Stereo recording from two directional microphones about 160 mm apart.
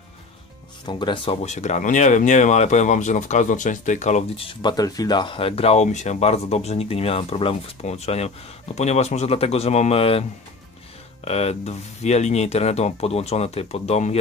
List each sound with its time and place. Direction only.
0.8 s speech: 30° left (ahead or behind)
11.2 s speech: 40° left (ahead or behind)